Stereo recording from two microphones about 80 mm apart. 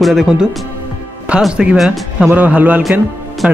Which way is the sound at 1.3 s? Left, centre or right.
Centre.